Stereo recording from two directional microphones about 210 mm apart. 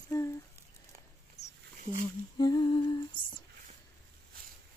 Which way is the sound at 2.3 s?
20° left (ahead or behind).